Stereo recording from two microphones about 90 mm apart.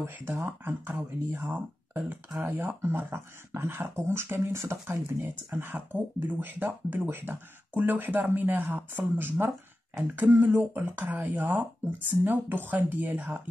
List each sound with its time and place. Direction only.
0.0 s speech: 30° right (ahead or behind)